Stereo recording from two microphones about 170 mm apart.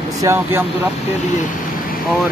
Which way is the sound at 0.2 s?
15° right (ahead or behind).